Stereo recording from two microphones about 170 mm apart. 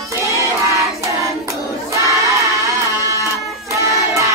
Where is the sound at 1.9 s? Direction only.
20° right (ahead or behind).